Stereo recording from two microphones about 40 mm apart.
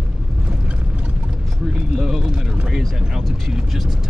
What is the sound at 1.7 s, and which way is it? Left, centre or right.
Vehicle, centre.